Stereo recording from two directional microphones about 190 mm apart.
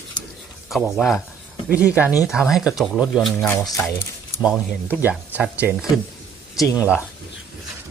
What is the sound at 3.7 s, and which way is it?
Speech, 10° left (ahead or behind).